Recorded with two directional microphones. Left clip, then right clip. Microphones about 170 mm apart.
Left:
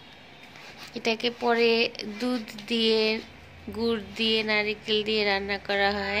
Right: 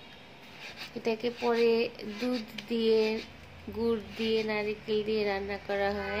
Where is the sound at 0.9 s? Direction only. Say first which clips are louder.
Left 4 dB; 5° right (ahead or behind).